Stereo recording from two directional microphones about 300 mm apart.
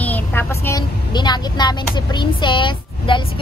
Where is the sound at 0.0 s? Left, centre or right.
Centre.